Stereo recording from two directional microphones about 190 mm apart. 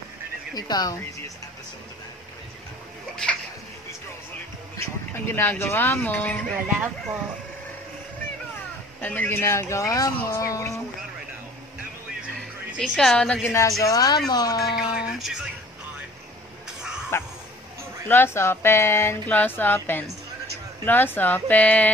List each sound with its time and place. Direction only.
0.6 s a woman's voice: 20° left (ahead or behind)
4.7 s speech: 10° left (ahead or behind)
6.5 s speech: 5° right (ahead or behind)
9.0 s speech: 10° left (ahead or behind)
12.9 s a woman's voice: centre (ahead or behind); by 14.8 s 20° left (ahead or behind)
15.0 s a sound: 5° right (ahead or behind)
17.1 s a sound: 15° left (ahead or behind)
18.0 s speech: 10° left (ahead or behind)